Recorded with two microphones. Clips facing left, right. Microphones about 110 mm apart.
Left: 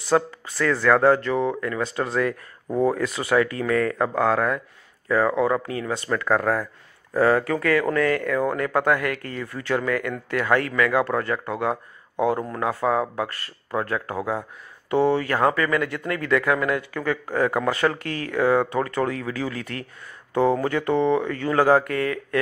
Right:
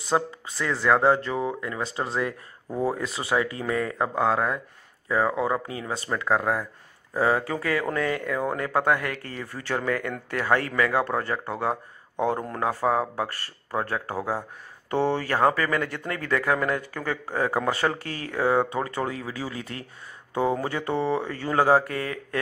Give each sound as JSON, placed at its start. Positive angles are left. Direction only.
{"t": 0.1, "sound": "speech", "side_deg": -25}